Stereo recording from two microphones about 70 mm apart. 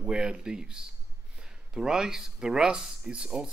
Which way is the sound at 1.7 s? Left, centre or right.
Centre.